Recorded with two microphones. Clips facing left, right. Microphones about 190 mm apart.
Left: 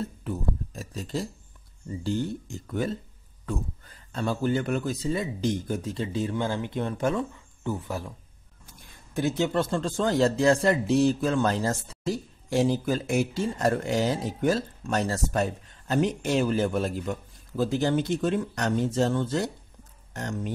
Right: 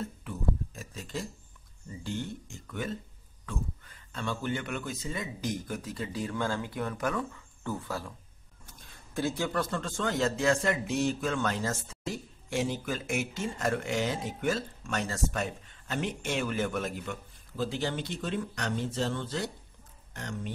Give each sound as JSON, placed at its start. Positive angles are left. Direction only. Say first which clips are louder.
{"t": 0.0, "sound": "a sound", "louder": "left 3 dB", "side_deg": 35}
{"t": 2.0, "sound": "speech", "louder": "left 7 dB", "side_deg": 35}
{"t": 9.1, "sound": "speech", "louder": "left 5 dB", "side_deg": 20}